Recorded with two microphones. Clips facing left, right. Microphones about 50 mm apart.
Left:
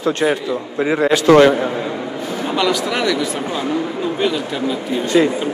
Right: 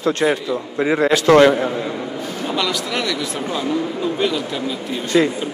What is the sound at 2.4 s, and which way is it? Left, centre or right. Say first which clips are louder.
Speech: left 4 dB; centre.